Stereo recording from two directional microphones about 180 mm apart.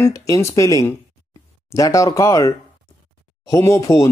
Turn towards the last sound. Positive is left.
turn(degrees=15)  # may be behind; listen again after turning